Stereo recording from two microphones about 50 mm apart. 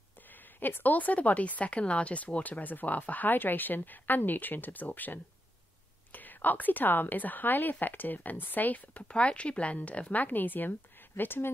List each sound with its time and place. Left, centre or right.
0.3 s speech: left